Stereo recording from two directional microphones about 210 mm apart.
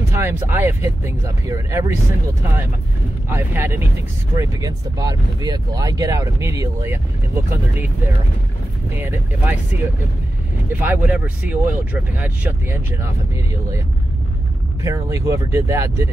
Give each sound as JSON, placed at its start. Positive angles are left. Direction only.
{"t": 0.1, "sound": "speech", "side_deg": -10}
{"t": 3.3, "sound": "speech", "side_deg": -10}
{"t": 8.9, "sound": "speech", "side_deg": -10}
{"t": 10.7, "sound": "speech", "side_deg": -10}